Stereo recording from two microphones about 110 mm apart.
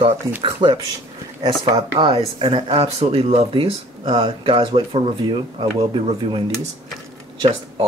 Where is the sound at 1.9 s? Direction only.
60° right (ahead or behind).